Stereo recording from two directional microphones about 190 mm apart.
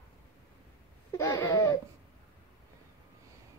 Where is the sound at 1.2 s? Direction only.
15° left (ahead or behind).